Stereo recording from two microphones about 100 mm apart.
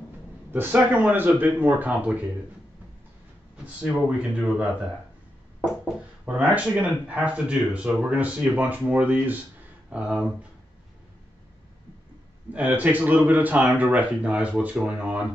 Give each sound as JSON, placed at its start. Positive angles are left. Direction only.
{"t": 0.5, "sound": "speech", "side_deg": -20}
{"t": 3.6, "sound": "speech", "side_deg": -15}
{"t": 5.9, "sound": "speech", "side_deg": -15}
{"t": 12.5, "sound": "speech", "side_deg": -15}